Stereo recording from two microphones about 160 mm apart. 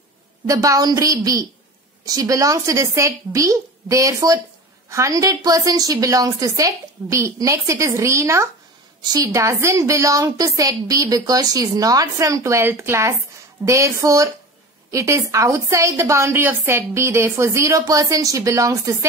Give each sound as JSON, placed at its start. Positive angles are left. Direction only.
{"t": 0.5, "sound": "a woman's voice", "side_deg": -20}